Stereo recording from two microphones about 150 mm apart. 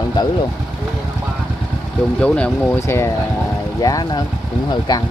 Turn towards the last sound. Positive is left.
turn(degrees=25)  # may be behind; listen again after turning